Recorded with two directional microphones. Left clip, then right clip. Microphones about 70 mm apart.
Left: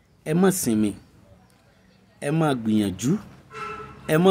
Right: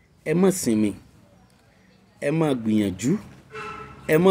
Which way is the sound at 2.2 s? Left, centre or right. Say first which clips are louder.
Right 1 dB; left.